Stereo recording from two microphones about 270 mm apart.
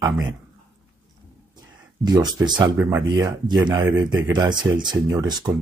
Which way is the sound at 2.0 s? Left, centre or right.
Centre.